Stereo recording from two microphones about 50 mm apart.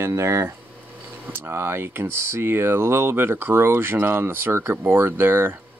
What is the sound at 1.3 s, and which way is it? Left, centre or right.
Speech, right.